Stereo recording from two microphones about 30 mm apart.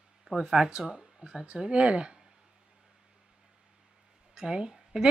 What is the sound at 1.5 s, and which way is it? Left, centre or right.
Speech, right.